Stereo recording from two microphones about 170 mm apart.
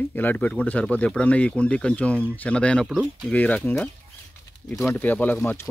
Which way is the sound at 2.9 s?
5° right (ahead or behind).